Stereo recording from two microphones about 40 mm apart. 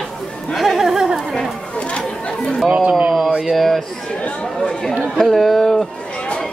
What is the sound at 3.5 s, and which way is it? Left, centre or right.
Speech, centre.